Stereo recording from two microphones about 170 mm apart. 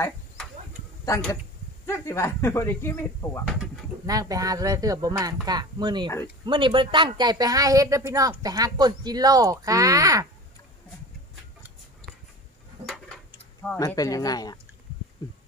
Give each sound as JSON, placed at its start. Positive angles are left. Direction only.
{"t": 1.1, "sound": "speech", "side_deg": 20}
{"t": 3.4, "sound": "speech", "side_deg": 0}
{"t": 4.0, "sound": "a woman's voice", "side_deg": -20}
{"t": 13.7, "sound": "speech", "side_deg": 20}